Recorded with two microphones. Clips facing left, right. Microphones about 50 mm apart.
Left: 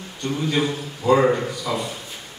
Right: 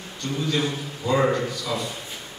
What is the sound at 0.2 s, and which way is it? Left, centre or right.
A man's voice, centre.